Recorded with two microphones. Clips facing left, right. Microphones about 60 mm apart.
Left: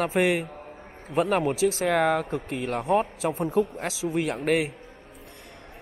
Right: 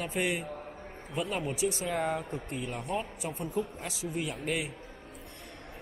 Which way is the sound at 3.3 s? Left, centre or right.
Left.